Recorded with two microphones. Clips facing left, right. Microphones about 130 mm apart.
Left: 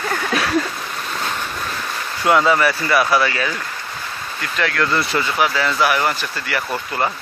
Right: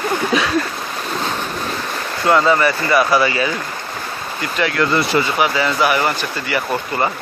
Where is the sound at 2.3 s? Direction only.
5° left (ahead or behind).